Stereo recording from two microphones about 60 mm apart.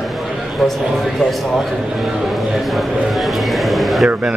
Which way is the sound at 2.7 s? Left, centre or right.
Centre.